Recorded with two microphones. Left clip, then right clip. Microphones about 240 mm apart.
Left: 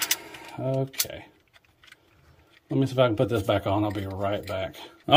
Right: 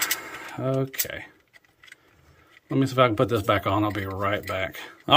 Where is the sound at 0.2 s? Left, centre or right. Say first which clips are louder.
Right 3 dB; centre.